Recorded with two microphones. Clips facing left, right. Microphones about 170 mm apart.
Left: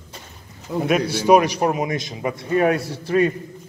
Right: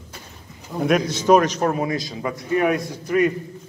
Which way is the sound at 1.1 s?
10° left (ahead or behind).